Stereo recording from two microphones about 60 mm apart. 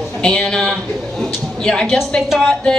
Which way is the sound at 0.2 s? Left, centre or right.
Centre.